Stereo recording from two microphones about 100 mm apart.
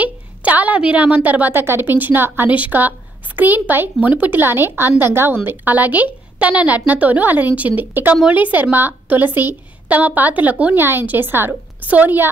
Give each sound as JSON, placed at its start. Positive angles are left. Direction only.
{"t": 0.0, "sound": "a woman's voice", "side_deg": -15}